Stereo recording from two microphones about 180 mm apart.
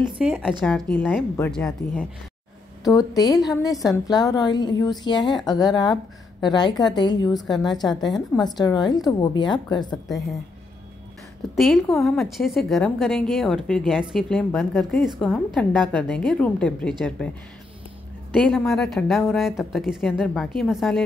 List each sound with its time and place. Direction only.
0.2 s a woman's voice: 5° right (ahead or behind)
2.8 s a woman's voice: 20° left (ahead or behind)
11.5 s a woman's voice: centre (ahead or behind)
18.3 s a woman's voice: 5° left (ahead or behind)